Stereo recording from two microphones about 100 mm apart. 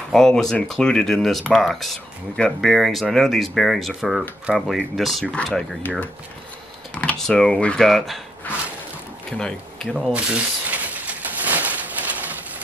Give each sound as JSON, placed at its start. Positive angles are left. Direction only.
{"t": 0.1, "sound": "speech", "side_deg": 5}
{"t": 5.2, "sound": "speech", "side_deg": 10}
{"t": 9.4, "sound": "speech", "side_deg": 5}
{"t": 10.1, "sound": "a sound", "side_deg": -15}